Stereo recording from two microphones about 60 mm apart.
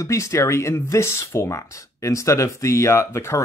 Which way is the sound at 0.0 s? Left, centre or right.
Left.